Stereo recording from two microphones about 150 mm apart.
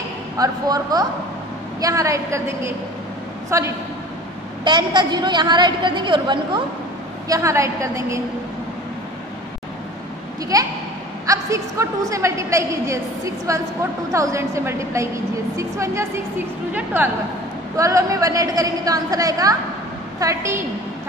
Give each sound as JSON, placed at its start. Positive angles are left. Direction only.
{"t": 0.4, "sound": "a woman's voice", "side_deg": -25}
{"t": 4.6, "sound": "a woman's voice", "side_deg": -30}
{"t": 7.2, "sound": "a woman's voice", "side_deg": -20}
{"t": 10.5, "sound": "a woman's voice", "side_deg": -25}